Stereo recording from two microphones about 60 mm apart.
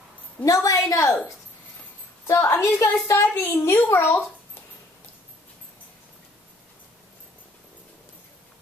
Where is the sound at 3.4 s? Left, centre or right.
Left.